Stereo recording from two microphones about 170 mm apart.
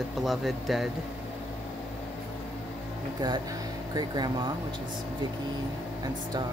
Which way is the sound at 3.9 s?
25° right (ahead or behind).